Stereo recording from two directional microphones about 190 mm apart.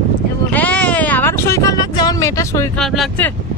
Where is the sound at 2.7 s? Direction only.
5° left (ahead or behind).